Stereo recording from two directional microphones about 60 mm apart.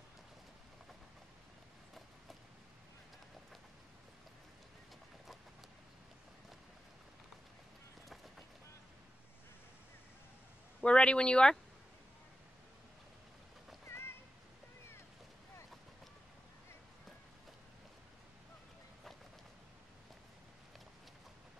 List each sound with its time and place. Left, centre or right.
8.1 s run: centre
10.8 s speech: centre
13.8 s a sound: left